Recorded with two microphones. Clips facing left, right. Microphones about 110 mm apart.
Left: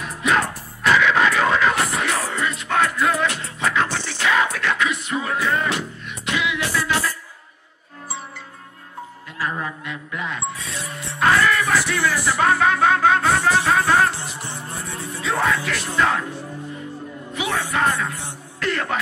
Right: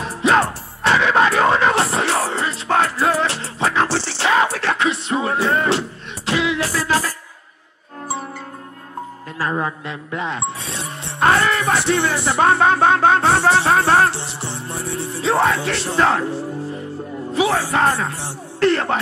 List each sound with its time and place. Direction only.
0.0 s music: 30° right (ahead or behind)
9.4 s music: 35° right (ahead or behind)
17.3 s speech: 35° right (ahead or behind)